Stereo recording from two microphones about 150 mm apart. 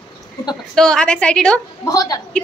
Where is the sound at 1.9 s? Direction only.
25° left (ahead or behind).